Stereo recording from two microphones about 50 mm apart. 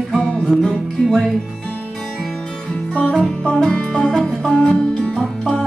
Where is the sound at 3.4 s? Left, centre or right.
Centre.